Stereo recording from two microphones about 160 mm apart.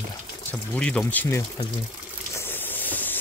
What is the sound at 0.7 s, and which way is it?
Speech, 5° left (ahead or behind).